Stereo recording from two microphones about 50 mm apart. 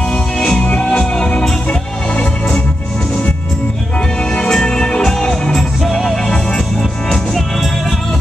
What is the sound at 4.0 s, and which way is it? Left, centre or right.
Music, centre.